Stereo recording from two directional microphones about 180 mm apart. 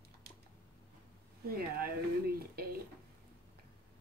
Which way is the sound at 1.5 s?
55° right (ahead or behind).